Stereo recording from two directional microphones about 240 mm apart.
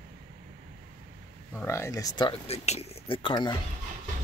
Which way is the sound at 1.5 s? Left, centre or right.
Centre.